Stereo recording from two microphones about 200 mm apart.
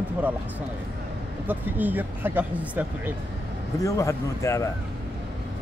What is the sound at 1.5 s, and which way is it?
Speech, 10° right (ahead or behind).